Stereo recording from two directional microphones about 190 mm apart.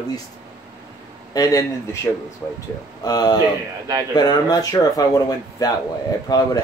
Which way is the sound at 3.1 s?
20° left (ahead or behind).